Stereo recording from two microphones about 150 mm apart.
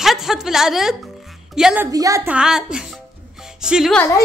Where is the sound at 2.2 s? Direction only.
5° right (ahead or behind).